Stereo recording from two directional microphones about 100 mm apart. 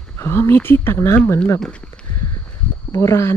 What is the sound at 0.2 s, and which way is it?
Speech, 25° left (ahead or behind).